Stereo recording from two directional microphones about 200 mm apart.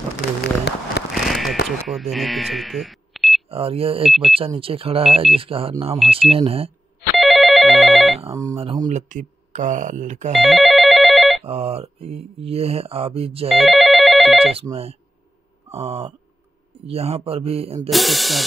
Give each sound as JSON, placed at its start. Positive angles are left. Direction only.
{"t": 0.4, "sound": "a sound", "side_deg": 55}
{"t": 1.1, "sound": "a sound", "side_deg": 0}
{"t": 1.9, "sound": "speech", "side_deg": 0}
{"t": 3.4, "sound": "speech", "side_deg": -30}
{"t": 7.2, "sound": "telephone bell ringing", "side_deg": 0}
{"t": 8.2, "sound": "speech", "side_deg": -20}
{"t": 8.8, "sound": "speech", "side_deg": -40}
{"t": 10.3, "sound": "telephone bell ringing", "side_deg": 0}
{"t": 11.4, "sound": "speech", "side_deg": -30}
{"t": 13.6, "sound": "telephone bell ringing", "side_deg": 0}
{"t": 14.4, "sound": "speech", "side_deg": -30}
{"t": 17.8, "sound": "hiss", "side_deg": 0}